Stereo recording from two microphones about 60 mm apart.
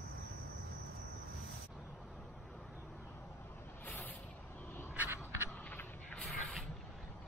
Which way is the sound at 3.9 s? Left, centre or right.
Left.